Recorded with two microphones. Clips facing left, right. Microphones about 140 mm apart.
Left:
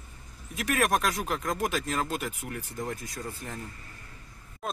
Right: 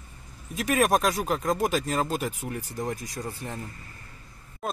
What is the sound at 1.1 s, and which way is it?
Speech, 30° right (ahead or behind).